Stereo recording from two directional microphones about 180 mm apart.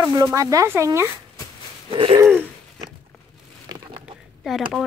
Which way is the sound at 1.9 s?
30° right (ahead or behind).